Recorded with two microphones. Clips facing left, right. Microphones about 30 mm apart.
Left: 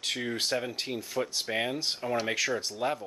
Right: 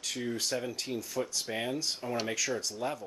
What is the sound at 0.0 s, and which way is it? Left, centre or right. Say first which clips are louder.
Speech: left 3 dB; left.